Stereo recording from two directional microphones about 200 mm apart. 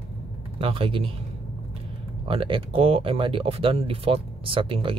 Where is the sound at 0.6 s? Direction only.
25° right (ahead or behind).